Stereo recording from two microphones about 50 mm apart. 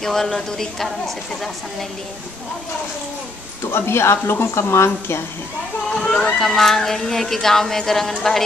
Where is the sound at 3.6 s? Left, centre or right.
Left.